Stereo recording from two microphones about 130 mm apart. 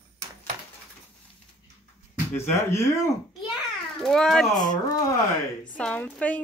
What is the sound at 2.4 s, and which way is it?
Speech, 20° left (ahead or behind).